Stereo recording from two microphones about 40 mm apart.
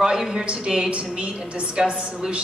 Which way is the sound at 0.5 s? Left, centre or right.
Centre.